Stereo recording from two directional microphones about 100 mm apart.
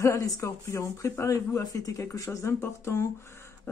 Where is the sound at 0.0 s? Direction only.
30° left (ahead or behind).